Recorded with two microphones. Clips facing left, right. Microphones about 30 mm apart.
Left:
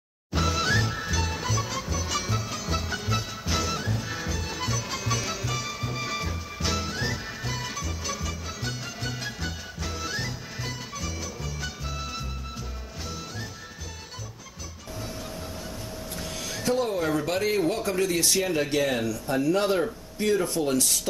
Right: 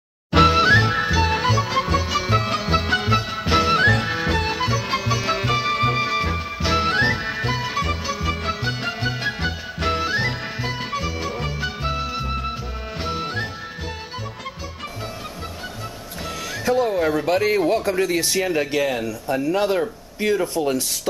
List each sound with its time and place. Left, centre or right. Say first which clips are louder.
0.3 s music: right 12 dB; right
0.6 s music: right 10 dB; right
2.3 s music: right 10 dB; right
3.8 s music: right 15 dB; right
4.1 s music: right 11 dB; right
4.6 s music: right 8 dB; right
6.0 s music: right 9 dB; right
6.8 s music: right 11 dB; right
9.8 s music: right 15 dB; right
10.0 s music: right 10 dB; right
16.6 s speech: right 6 dB; right